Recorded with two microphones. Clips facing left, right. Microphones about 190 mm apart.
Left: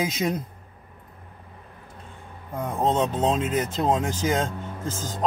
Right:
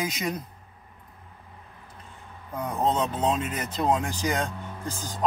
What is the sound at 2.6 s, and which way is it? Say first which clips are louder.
Speech: left 2 dB; 25° left (ahead or behind).